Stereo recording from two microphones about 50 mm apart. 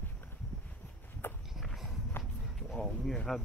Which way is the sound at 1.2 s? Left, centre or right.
Left.